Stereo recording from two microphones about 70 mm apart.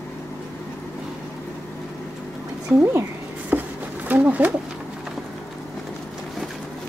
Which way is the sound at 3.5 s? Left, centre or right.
Right.